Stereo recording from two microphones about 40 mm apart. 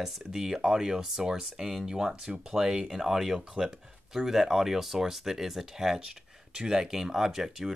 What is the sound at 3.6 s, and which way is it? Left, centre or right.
Speech, right.